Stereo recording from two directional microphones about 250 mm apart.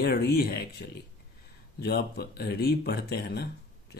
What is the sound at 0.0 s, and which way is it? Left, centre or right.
Speech, left.